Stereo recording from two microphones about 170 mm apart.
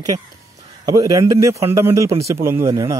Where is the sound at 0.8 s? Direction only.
20° right (ahead or behind).